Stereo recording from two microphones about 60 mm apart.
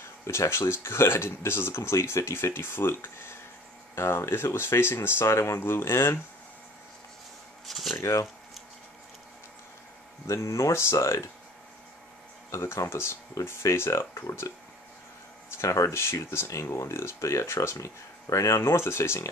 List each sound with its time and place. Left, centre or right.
0.3 s speech: left
5.2 s speech: left
5.6 s speech: left
7.6 s a sound: centre
8.0 s speech: left
10.2 s speech: left
12.4 s speech: left
13.3 s speech: left
15.5 s speech: left